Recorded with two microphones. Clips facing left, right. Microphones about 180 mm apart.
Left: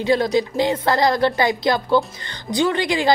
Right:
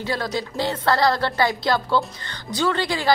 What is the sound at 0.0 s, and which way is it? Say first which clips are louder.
A woman's voice: left 8 dB; 15° left (ahead or behind).